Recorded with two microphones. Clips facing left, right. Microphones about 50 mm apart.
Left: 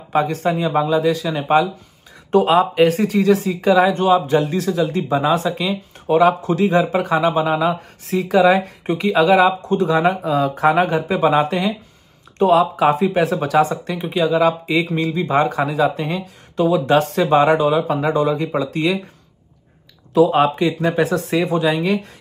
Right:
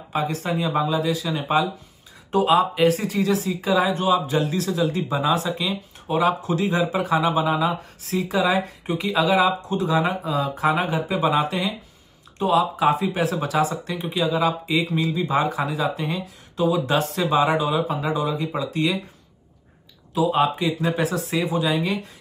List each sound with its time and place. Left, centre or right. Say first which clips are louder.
0.1 s speech: left 6 dB; left
20.2 s speech: left 4 dB; left